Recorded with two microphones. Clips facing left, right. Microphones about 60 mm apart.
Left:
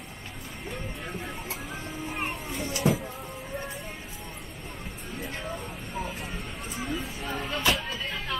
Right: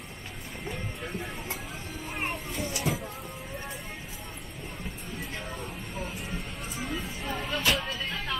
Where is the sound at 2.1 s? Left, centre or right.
Centre.